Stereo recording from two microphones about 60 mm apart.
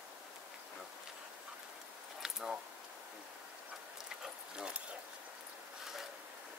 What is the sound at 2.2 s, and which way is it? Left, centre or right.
Keys jangling, centre.